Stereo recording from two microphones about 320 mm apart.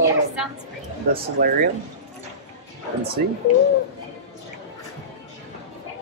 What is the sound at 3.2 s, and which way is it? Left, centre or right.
Speech, right.